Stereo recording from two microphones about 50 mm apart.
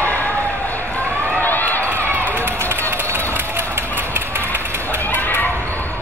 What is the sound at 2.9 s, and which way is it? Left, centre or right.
Crowd, right.